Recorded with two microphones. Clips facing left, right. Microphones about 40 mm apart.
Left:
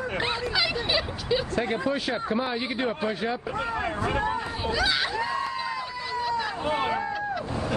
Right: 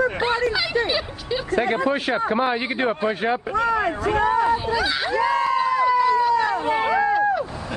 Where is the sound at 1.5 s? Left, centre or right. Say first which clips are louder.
Right 6 dB; right.